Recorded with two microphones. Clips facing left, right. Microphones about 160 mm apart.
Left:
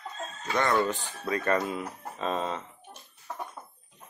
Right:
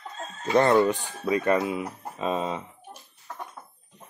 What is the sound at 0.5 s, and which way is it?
Speech, 30° right (ahead or behind).